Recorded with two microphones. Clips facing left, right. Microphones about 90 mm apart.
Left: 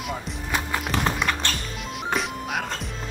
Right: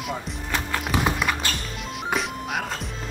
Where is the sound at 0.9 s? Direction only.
5° right (ahead or behind).